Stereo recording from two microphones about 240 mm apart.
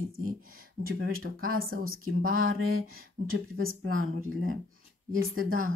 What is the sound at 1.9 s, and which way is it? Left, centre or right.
Speech, right.